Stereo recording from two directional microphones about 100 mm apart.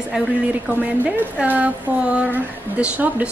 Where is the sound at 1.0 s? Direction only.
15° right (ahead or behind).